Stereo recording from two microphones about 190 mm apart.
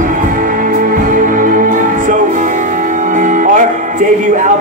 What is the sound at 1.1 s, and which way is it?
Music, 45° right (ahead or behind).